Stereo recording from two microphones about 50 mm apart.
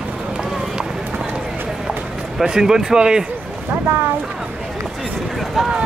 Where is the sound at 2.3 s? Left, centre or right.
Centre.